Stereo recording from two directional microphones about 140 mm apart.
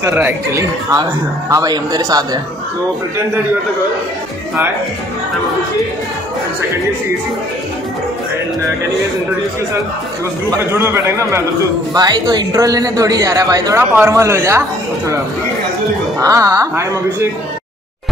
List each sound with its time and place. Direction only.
0.0 s a man's voice: 15° right (ahead or behind)
10.5 s a man's voice: 15° right (ahead or behind)
11.9 s a man's voice: 30° right (ahead or behind)
16.2 s a man's voice: 25° right (ahead or behind)